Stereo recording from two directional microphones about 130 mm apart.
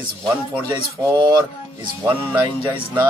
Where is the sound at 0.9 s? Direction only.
25° right (ahead or behind).